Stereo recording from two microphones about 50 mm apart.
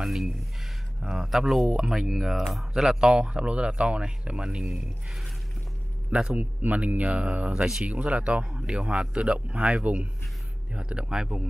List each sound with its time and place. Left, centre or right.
0.0 s speech: centre
6.0 s a man's voice: right
6.3 s speech: right; by 11.4 s centre